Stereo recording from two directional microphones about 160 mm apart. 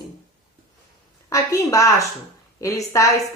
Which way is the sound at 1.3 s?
20° left (ahead or behind).